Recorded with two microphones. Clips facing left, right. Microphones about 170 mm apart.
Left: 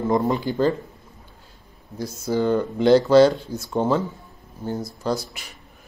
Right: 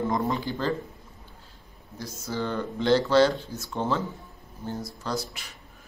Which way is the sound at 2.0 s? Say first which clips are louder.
Left 8 dB; 15° left (ahead or behind).